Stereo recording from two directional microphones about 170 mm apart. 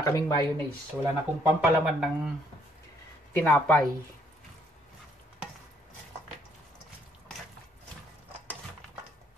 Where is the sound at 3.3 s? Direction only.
10° left (ahead or behind).